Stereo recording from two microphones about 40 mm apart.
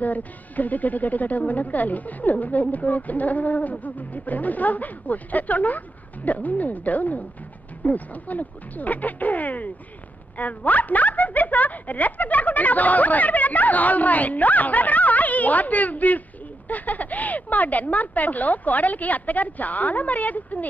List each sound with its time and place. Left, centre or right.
0.0 s a woman's voice: left